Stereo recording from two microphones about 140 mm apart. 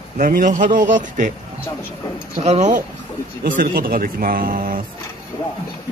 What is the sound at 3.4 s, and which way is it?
A man's voice, 75° right (ahead or behind).